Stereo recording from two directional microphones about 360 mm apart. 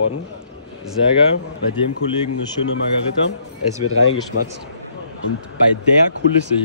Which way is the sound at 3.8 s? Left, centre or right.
Left.